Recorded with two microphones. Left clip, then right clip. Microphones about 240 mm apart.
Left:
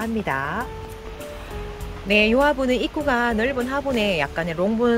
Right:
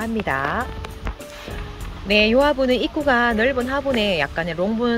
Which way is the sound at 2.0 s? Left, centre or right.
Centre.